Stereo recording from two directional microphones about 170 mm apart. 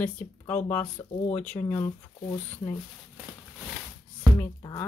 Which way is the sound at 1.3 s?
10° left (ahead or behind).